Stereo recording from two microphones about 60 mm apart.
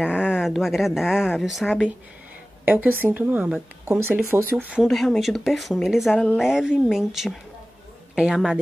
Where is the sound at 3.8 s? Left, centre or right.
Right.